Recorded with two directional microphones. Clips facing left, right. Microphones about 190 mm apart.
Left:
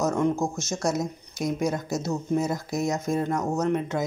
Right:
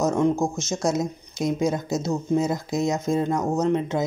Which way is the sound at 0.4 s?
20° right (ahead or behind).